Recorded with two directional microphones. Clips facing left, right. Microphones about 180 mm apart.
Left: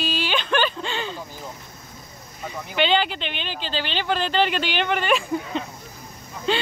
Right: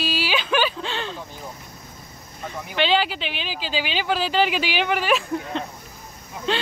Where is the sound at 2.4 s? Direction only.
Centre (ahead or behind).